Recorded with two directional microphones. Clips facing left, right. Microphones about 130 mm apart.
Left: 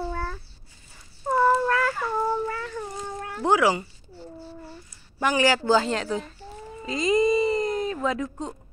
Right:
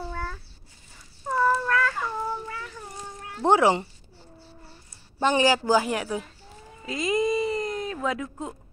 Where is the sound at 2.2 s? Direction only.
50° left (ahead or behind).